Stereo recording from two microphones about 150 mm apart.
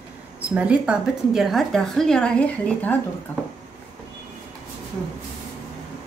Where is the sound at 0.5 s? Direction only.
10° right (ahead or behind); by 2.9 s 5° left (ahead or behind).